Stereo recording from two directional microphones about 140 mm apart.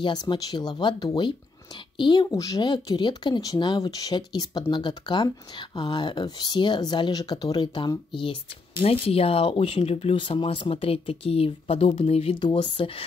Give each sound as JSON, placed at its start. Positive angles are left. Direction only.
{"t": 0.0, "sound": "speech", "side_deg": 35}